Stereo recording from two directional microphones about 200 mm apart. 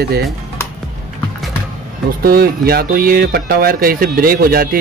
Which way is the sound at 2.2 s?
50° right (ahead or behind).